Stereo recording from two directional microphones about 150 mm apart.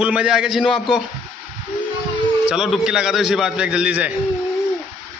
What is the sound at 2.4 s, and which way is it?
A man's voice, 5° right (ahead or behind).